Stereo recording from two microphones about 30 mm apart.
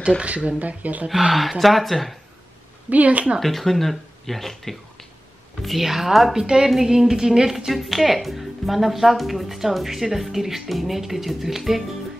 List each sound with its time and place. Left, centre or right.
0.2 s speech: right
1.6 s speech: centre
2.9 s speech: right
3.3 s speech: centre
6.3 s music: right
7.5 s speech: centre